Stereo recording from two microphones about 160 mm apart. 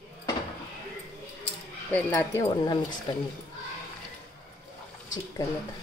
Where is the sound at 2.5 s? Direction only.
30° left (ahead or behind).